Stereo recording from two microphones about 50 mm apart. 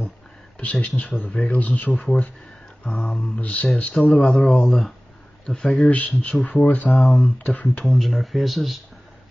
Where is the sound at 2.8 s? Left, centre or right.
Centre.